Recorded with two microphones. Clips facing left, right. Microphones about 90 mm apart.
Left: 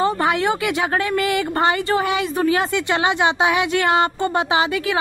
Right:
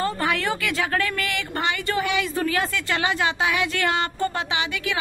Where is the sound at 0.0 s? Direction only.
25° left (ahead or behind).